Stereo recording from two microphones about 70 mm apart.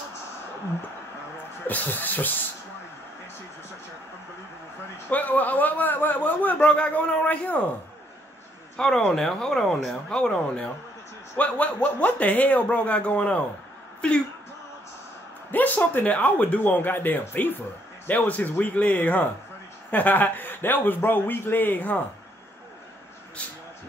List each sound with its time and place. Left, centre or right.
1.7 s a man's voice: left
5.1 s a man's voice: left
8.7 s a man's voice: centre
15.5 s a man's voice: left